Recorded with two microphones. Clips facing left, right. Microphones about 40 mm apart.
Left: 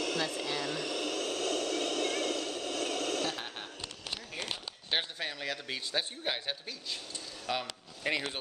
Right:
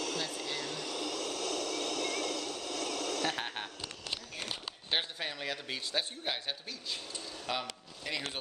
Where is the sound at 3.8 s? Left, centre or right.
Centre.